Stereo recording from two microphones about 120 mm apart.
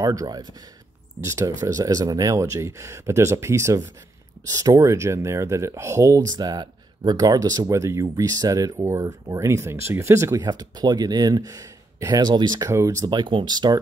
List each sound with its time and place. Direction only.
0.0 s speech: 30° right (ahead or behind)
10.4 s speech: 35° right (ahead or behind)